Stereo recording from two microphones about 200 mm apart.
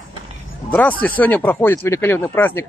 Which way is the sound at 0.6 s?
10° left (ahead or behind).